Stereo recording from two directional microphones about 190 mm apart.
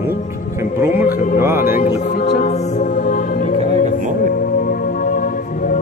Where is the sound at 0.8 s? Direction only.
10° right (ahead or behind).